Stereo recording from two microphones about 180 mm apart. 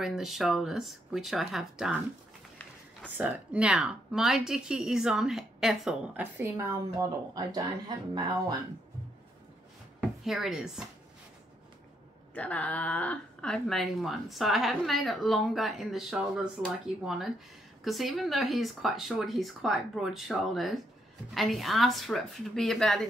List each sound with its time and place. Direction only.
0.0 s speech: centre (ahead or behind)
3.2 s speech: 5° right (ahead or behind); by 8.5 s 20° right (ahead or behind)
10.2 s speech: centre (ahead or behind)
12.4 s speech: 5° left (ahead or behind)